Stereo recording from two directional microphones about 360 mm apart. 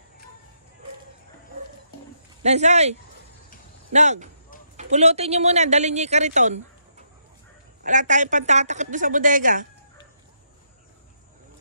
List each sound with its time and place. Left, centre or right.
2.4 s speech: centre
7.8 s speech: right